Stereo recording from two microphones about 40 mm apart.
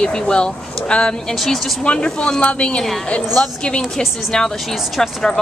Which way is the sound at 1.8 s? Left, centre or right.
Left.